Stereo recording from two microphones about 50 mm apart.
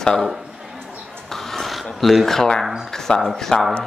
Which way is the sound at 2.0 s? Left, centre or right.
Centre.